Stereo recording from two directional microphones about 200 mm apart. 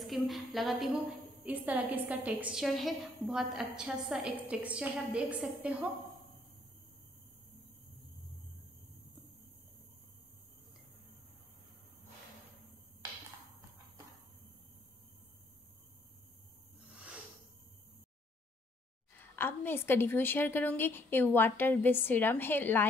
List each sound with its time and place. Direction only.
0.0 s a woman's voice: centre (ahead or behind)
19.1 s a woman's voice: 10° left (ahead or behind)